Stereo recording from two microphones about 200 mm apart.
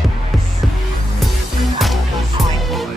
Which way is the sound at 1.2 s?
Centre (ahead or behind).